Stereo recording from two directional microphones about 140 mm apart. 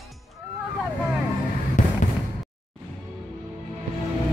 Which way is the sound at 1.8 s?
65° left (ahead or behind).